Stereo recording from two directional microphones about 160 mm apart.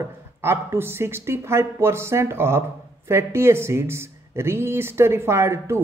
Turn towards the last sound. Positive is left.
turn(degrees=-15)  # may be behind; listen again after turning